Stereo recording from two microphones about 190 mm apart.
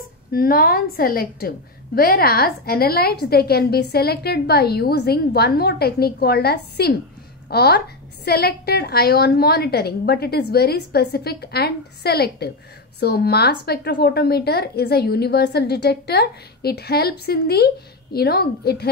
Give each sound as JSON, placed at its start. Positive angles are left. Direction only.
{"t": 0.3, "sound": "a woman's voice", "side_deg": 50}